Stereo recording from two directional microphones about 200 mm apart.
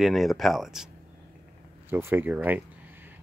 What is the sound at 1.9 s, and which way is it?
Speech, 10° right (ahead or behind).